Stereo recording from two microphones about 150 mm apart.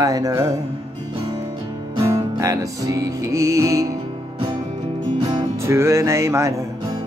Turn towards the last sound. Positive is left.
turn(degrees=-20)  # may be behind; listen again after turning